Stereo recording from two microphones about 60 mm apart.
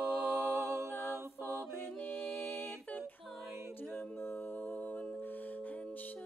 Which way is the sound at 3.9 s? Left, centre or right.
Centre.